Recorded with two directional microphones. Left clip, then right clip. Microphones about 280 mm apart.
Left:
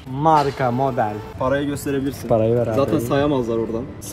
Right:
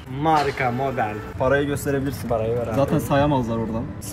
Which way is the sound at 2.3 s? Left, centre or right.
Left.